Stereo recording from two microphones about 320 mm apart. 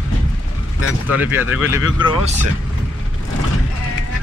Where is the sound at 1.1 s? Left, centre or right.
Centre.